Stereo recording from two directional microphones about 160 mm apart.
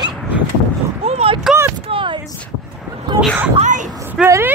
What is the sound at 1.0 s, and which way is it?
Speech, 35° right (ahead or behind).